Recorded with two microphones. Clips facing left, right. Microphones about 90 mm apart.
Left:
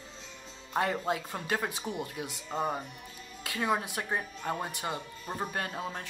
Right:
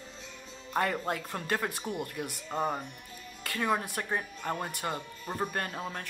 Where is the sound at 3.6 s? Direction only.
15° left (ahead or behind).